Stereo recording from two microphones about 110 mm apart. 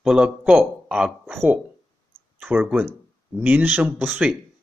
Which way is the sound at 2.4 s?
15° right (ahead or behind).